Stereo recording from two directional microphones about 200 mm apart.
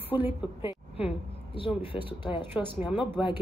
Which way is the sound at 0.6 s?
30° left (ahead or behind).